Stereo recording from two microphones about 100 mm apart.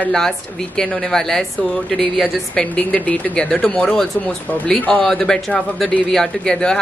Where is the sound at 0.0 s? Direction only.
5° left (ahead or behind).